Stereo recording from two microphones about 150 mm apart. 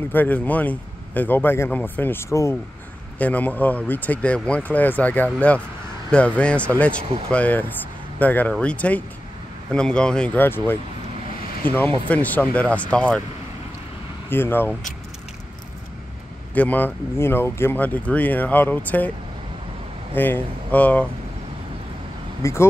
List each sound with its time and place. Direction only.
0.1 s speech: 10° left (ahead or behind)
12.1 s speech: 10° left (ahead or behind)
14.3 s speech: 15° left (ahead or behind)
16.5 s speech: 10° left (ahead or behind)
20.2 s speech: 10° left (ahead or behind)
22.4 s speech: 20° left (ahead or behind)